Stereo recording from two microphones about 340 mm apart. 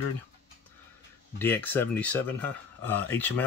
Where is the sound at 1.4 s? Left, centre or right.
Centre.